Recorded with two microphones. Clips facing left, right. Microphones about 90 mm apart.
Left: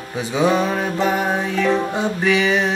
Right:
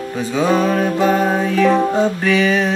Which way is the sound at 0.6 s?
5° left (ahead or behind).